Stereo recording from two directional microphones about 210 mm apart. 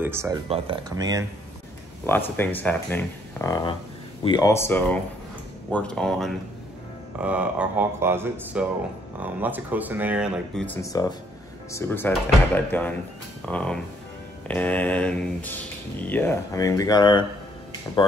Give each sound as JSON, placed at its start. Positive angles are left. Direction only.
{"t": 0.0, "sound": "speech", "side_deg": -10}
{"t": 2.0, "sound": "speech", "side_deg": 10}
{"t": 10.7, "sound": "speech", "side_deg": 15}